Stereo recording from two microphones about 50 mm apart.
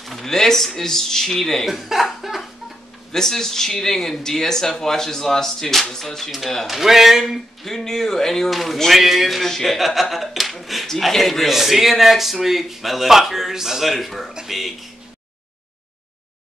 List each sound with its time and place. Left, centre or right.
0.0 s a man's voice: centre
3.1 s speech: centre
6.7 s a man's voice: centre
7.3 s a man's voice: centre